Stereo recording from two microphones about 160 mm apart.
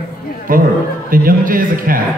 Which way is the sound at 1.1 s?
60° right (ahead or behind).